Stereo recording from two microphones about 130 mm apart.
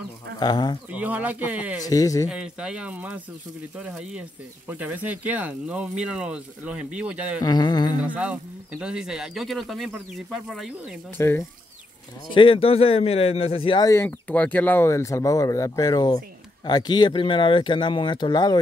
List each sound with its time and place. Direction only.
0.4 s speech: 30° left (ahead or behind)
0.9 s speech: 10° right (ahead or behind)
1.8 s speech: 25° left (ahead or behind)
2.2 s speech: 5° right (ahead or behind)
7.4 s speech: 35° left (ahead or behind)
8.0 s speech: 10° right (ahead or behind)
11.1 s speech: 20° left (ahead or behind)
12.4 s a man's voice: 45° left (ahead or behind)
13.7 s speech: 25° left (ahead or behind)
14.0 s speech: 10° left (ahead or behind); by 18.6 s 35° left (ahead or behind)